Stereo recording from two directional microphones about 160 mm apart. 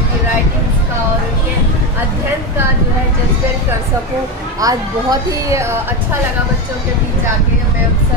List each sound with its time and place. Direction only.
4.6 s speech: 20° right (ahead or behind)